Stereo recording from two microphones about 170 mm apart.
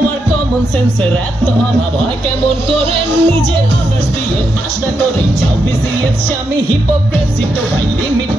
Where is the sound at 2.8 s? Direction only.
35° right (ahead or behind).